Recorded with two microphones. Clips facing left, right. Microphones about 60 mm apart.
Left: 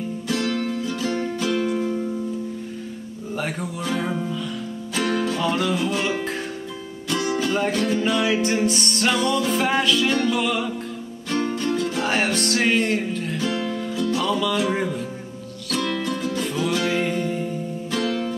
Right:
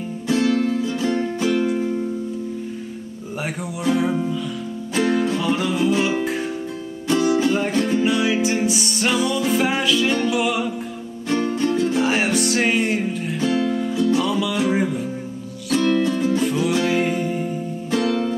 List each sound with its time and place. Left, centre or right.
0.3 s music: right
1.7 s music: centre
3.4 s music: centre
7.1 s music: right
8.0 s music: centre
11.5 s music: right
12.0 s music: centre
13.4 s music: right
13.7 s music: centre
17.9 s music: right